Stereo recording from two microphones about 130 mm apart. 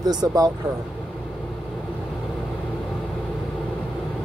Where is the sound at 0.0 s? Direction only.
30° right (ahead or behind).